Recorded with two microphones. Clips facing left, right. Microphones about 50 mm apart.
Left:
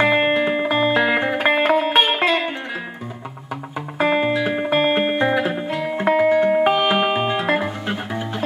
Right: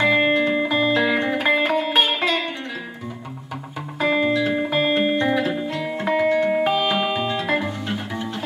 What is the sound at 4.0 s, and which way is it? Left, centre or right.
Music, left.